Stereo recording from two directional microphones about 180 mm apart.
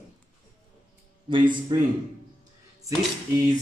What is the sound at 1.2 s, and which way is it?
Speech, 25° right (ahead or behind).